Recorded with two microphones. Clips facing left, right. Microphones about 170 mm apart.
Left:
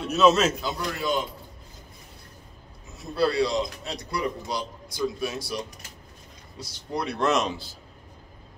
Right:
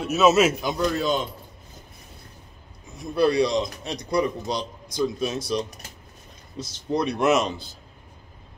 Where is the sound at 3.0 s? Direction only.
20° right (ahead or behind).